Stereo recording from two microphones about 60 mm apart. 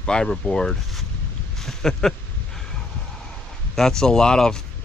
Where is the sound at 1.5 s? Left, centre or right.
Centre.